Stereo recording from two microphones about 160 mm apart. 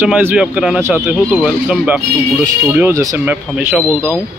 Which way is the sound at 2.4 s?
15° right (ahead or behind).